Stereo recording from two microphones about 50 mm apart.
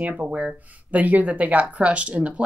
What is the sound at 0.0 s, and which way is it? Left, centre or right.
Speech, right.